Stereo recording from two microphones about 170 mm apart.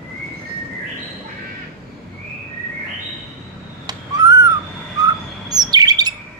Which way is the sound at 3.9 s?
20° right (ahead or behind).